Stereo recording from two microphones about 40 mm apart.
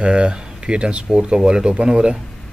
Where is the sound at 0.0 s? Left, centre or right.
Right.